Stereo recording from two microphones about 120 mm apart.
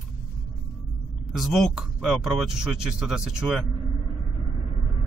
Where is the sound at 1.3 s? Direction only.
Centre (ahead or behind).